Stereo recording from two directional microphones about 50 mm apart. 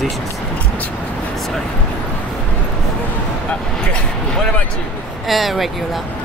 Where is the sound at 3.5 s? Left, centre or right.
Centre.